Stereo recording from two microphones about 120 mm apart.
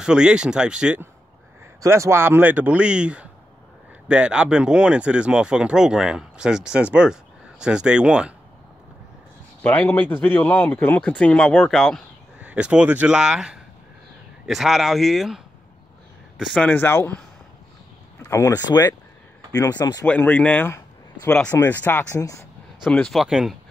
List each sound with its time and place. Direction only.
0.0 s speech: 5° right (ahead or behind)
1.8 s speech: 25° right (ahead or behind); by 8.3 s 10° right (ahead or behind)
9.6 s a man's voice: 15° left (ahead or behind)
12.4 s speech: 10° right (ahead or behind)
16.5 s a man's voice: 15° left (ahead or behind)
18.3 s speech: 25° left (ahead or behind)
20.1 s speech: 10° left (ahead or behind)
21.3 s a man's voice: 5° left (ahead or behind)
22.2 s speech: 25° left (ahead or behind)
22.8 s a man's voice: 10° left (ahead or behind)
23.1 s speech: 5° right (ahead or behind)